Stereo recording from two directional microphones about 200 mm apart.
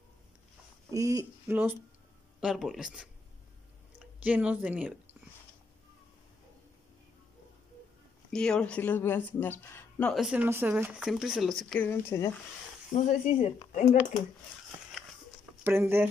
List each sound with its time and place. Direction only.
0.9 s speech: 15° right (ahead or behind)
8.3 s speech: 5° left (ahead or behind)
12.9 s speech: 35° left (ahead or behind)
15.6 s speech: 10° right (ahead or behind)